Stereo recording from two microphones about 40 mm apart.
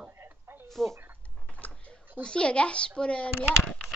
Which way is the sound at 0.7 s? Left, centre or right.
Centre.